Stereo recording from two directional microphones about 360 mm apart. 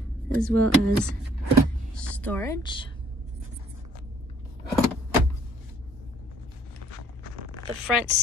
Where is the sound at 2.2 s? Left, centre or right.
Centre.